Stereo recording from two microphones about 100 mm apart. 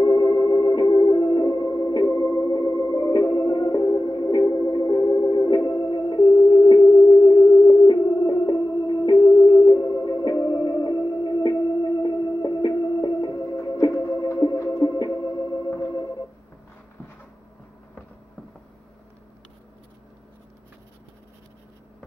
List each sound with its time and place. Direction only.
0.0 s music: 45° left (ahead or behind)
2.0 s music: 30° left (ahead or behind)